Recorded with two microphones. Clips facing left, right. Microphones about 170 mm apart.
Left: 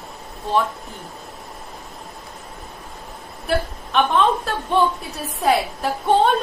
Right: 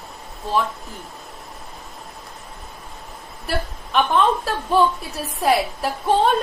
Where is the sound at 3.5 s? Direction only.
Centre (ahead or behind).